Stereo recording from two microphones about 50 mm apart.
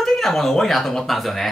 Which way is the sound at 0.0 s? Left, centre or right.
Centre.